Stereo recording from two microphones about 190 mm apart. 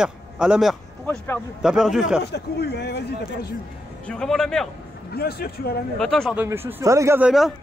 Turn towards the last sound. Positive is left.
turn(degrees=-5)  # may be behind; listen again after turning